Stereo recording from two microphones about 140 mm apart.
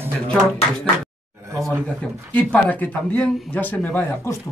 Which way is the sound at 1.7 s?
10° left (ahead or behind).